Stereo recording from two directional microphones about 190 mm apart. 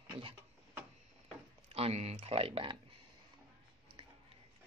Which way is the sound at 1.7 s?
35° right (ahead or behind).